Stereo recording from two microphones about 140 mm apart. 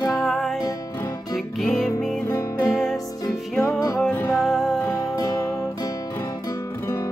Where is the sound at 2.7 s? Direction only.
Centre (ahead or behind).